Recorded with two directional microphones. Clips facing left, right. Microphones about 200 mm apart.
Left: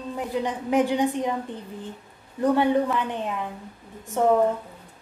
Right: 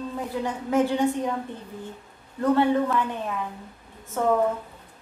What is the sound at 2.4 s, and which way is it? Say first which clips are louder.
A woman's voice: even; 15° left (ahead or behind).